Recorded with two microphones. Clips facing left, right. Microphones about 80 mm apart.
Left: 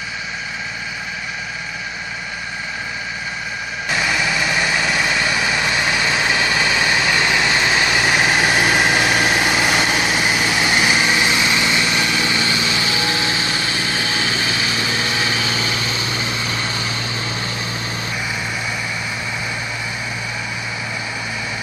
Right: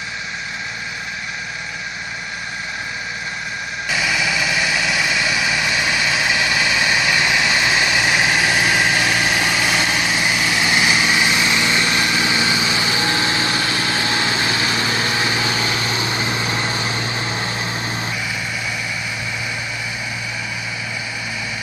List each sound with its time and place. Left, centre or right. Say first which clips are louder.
3.9 s light engine: left 1 dB; centre
4.7 s vehicle: left 1 dB; centre
5.9 s vehicle: left 1 dB; left
6.9 s vehicle: even; centre
9.2 s vehicle: left 2 dB; left
9.5 s vehicle: left 2 dB; left; by 11.1 s centre
11.2 s light engine: even; centre
12.9 s light engine: right 1 dB; right
15.9 s vehicle: right 2 dB; right